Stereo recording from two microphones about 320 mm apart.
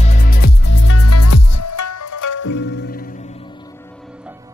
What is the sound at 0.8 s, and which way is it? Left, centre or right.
Music, left.